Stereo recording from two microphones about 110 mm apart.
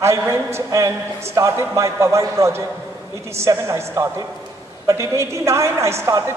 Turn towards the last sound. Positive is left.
turn(degrees=-25)  # may be behind; listen again after turning